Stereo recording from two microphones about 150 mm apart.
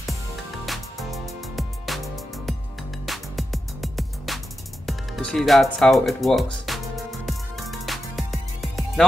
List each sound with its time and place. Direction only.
0.7 s music: centre (ahead or behind)